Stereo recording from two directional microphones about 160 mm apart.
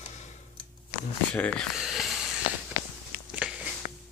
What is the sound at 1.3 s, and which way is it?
Speech, 5° left (ahead or behind).